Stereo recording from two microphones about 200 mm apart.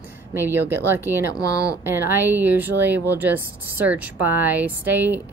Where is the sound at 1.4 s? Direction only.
15° left (ahead or behind).